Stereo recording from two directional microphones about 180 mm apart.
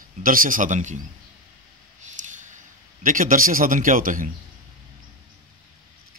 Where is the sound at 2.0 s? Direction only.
45° right (ahead or behind).